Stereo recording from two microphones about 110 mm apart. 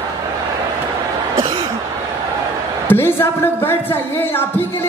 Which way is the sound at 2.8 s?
20° left (ahead or behind).